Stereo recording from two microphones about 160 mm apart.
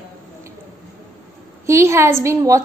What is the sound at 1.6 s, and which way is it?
A woman's voice, 15° right (ahead or behind).